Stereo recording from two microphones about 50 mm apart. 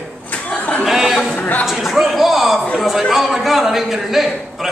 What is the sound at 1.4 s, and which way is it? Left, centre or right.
Speech, left.